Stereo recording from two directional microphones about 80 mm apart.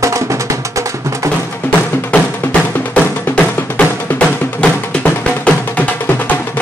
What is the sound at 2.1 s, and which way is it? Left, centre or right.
Music, centre.